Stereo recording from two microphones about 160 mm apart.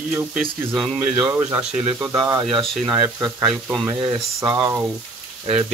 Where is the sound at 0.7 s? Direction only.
10° right (ahead or behind); by 4.5 s 30° right (ahead or behind).